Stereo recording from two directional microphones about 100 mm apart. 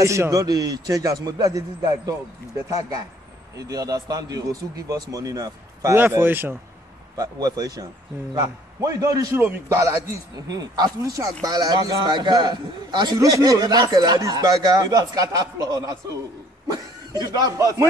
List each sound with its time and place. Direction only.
0.0 s speech: 30° right (ahead or behind)
3.5 s speech: 40° right (ahead or behind)
5.9 s speech: 20° right (ahead or behind)
7.2 s speech: 40° right (ahead or behind)
12.0 s a man's voice: 45° right (ahead or behind)